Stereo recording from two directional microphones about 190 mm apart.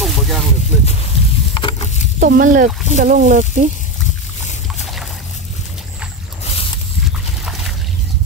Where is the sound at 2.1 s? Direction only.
50° right (ahead or behind).